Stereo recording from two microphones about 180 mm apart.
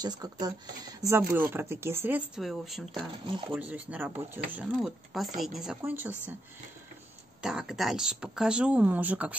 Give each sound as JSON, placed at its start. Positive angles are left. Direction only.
{"t": 0.0, "sound": "speech", "side_deg": -20}
{"t": 5.8, "sound": "speech", "side_deg": -10}
{"t": 7.4, "sound": "speech", "side_deg": 0}